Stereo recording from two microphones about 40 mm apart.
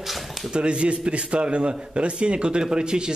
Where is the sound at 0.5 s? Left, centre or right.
Right.